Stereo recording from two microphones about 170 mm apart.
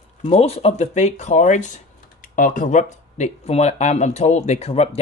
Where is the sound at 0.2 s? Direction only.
40° left (ahead or behind).